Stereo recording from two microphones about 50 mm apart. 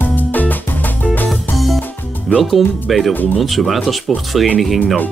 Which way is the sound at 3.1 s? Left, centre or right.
Left.